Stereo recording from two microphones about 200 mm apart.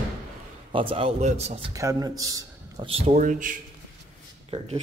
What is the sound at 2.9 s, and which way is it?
Speech, 30° right (ahead or behind).